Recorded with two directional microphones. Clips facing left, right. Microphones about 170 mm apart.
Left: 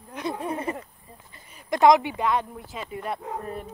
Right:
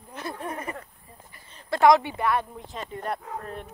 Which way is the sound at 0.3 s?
25° left (ahead or behind).